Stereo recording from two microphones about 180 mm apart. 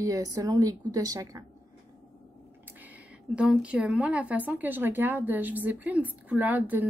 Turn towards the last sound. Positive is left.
turn(degrees=-10)  # may be behind; listen again after turning